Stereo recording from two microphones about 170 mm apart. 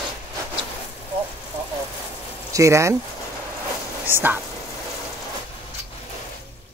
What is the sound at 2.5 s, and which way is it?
Speech, 15° right (ahead or behind).